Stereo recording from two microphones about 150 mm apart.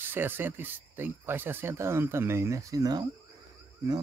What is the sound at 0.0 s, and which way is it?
Speech, 15° right (ahead or behind).